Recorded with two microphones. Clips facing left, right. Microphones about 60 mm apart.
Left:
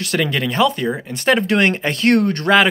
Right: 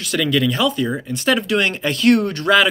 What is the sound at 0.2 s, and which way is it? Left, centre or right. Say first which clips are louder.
Speech: even; left.